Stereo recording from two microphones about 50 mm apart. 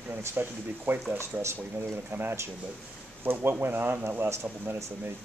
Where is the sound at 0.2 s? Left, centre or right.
Right.